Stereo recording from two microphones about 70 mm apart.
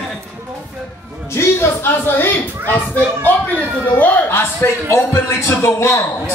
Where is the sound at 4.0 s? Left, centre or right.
Left.